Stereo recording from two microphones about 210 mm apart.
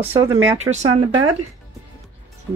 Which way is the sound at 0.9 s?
20° right (ahead or behind).